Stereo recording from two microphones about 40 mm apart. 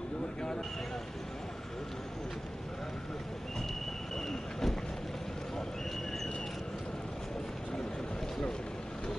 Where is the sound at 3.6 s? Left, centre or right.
Centre.